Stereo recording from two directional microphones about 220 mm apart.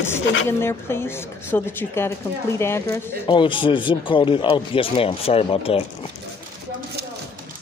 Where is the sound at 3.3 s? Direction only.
20° left (ahead or behind).